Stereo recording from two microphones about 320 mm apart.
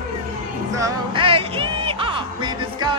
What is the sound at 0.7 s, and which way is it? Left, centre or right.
Music, centre.